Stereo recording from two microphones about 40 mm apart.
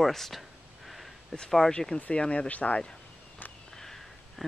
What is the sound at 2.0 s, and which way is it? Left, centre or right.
Speech, left.